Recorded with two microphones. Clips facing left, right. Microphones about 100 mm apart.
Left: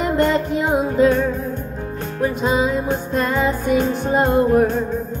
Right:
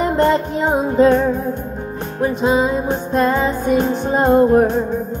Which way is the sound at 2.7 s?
25° right (ahead or behind).